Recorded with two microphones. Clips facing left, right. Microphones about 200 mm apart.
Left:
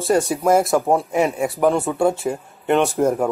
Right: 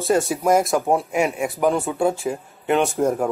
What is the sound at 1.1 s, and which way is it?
Speech, 35° left (ahead or behind).